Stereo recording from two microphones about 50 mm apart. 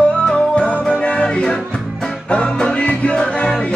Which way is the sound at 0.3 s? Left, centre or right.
Centre.